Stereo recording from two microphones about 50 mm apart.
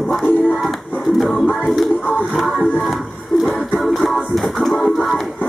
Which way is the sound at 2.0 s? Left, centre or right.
Left.